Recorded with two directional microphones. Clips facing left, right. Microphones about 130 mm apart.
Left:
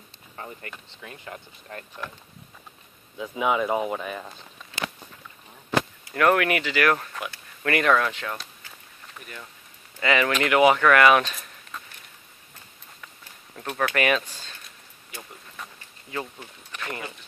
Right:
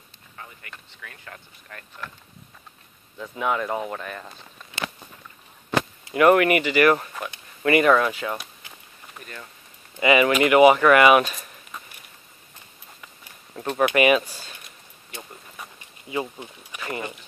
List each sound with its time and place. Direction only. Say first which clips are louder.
0.4 s speech: left 5 dB; 35° left (ahead or behind)
3.2 s speech: left 2 dB; 10° left (ahead or behind)
6.1 s speech: right 4 dB; 5° right (ahead or behind)
7.6 s a sound: right 4 dB; 5° right (ahead or behind)
9.2 s speech: right 1 dB; 5° left (ahead or behind)
9.9 s speech: right 5 dB; 10° right (ahead or behind)
13.0 s a sound: left 2 dB; 10° right (ahead or behind)